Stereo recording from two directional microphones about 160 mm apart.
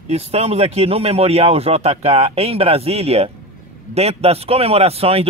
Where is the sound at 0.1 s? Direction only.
40° right (ahead or behind).